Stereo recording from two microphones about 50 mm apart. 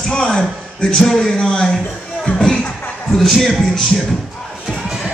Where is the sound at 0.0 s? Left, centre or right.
Centre.